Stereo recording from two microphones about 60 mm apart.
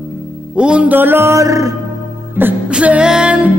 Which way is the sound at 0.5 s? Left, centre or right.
Centre.